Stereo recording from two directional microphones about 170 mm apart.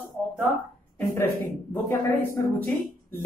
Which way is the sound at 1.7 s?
10° left (ahead or behind).